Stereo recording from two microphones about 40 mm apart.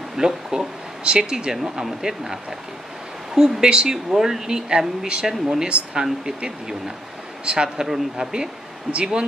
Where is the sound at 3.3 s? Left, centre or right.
Centre.